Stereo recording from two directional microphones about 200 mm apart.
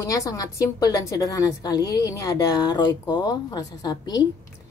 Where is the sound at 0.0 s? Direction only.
15° left (ahead or behind).